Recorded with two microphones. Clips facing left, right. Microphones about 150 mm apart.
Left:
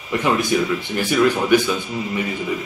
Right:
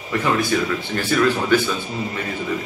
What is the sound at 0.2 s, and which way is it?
Speech, 15° left (ahead or behind).